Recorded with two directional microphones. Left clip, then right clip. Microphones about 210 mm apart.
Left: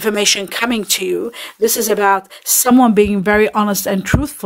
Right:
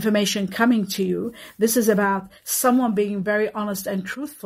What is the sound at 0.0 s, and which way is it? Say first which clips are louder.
Speech: left 7 dB; 35° left (ahead or behind).